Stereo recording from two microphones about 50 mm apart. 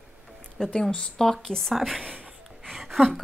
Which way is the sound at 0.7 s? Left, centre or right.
Centre.